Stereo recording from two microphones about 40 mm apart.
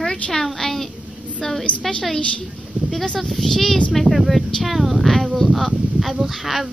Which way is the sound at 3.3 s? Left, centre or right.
Centre.